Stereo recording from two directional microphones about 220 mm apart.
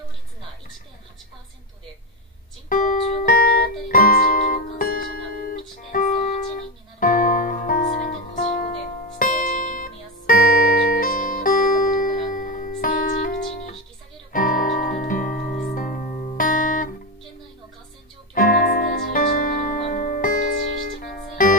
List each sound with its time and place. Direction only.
2.7 s music: 35° left (ahead or behind)
18.3 s music: 40° left (ahead or behind)